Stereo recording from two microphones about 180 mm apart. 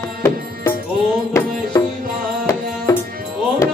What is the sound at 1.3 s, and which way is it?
Music, 15° left (ahead or behind).